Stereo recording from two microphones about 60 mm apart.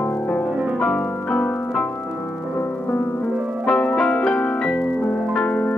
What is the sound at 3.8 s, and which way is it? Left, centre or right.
Music, centre.